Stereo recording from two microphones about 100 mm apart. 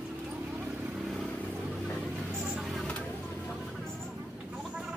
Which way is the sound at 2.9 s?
15° left (ahead or behind).